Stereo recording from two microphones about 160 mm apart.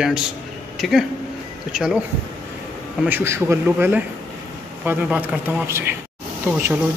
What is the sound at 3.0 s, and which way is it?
Speech, 15° right (ahead or behind).